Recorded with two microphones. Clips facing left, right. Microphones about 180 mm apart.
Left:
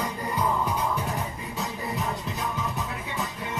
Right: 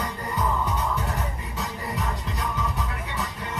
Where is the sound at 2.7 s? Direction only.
25° left (ahead or behind).